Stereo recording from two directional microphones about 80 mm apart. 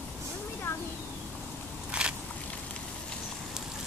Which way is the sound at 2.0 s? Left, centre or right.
Centre.